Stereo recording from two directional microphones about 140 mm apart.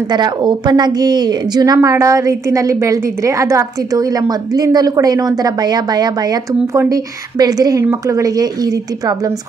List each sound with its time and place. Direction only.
0.1 s a woman's voice: 30° right (ahead or behind)